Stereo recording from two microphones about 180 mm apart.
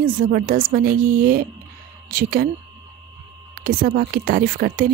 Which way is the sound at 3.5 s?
55° right (ahead or behind).